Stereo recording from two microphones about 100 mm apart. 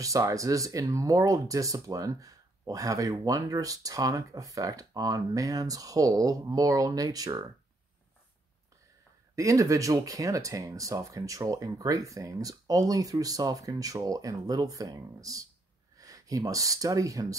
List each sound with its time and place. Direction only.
0.0 s speech: 35° right (ahead or behind)
9.3 s speech: 35° right (ahead or behind)